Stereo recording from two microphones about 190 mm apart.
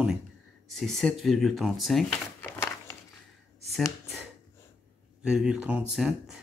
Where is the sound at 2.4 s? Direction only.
10° left (ahead or behind).